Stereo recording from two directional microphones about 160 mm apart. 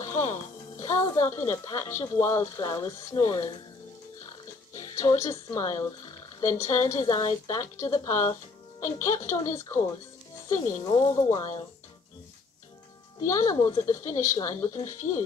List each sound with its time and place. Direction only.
0.0 s speech: 20° left (ahead or behind)
4.7 s music: 20° left (ahead or behind)
5.1 s speech: 20° left (ahead or behind)
13.2 s speech: 20° left (ahead or behind)